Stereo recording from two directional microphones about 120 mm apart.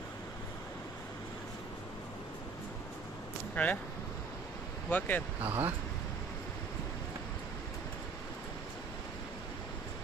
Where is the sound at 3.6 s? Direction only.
15° left (ahead or behind).